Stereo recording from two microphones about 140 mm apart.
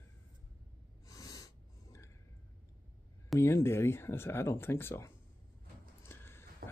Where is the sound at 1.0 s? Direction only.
25° left (ahead or behind).